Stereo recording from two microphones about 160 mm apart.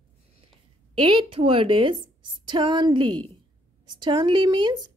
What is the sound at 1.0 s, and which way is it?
A woman's voice, 30° right (ahead or behind).